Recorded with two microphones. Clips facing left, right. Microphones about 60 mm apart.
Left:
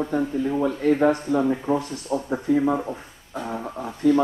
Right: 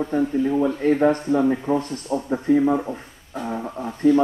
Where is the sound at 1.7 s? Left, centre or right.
Centre.